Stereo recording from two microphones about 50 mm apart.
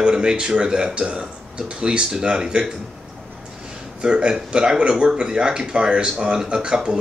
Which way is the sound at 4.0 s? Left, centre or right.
Centre.